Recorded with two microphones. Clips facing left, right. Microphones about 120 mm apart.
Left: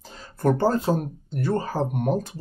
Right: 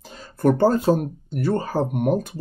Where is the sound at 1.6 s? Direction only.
10° right (ahead or behind).